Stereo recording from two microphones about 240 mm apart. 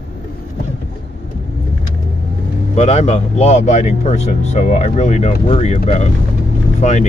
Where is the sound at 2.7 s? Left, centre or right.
Left.